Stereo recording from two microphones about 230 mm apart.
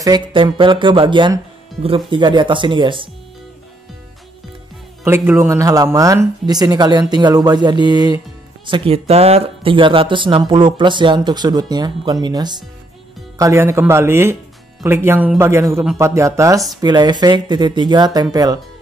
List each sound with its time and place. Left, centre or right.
0.0 s speech: centre
5.0 s speech: centre